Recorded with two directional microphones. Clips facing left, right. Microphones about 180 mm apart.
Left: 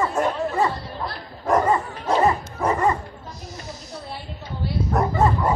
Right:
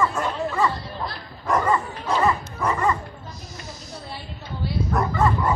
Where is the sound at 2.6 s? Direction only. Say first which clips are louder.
Left 3 dB; 45° left (ahead or behind).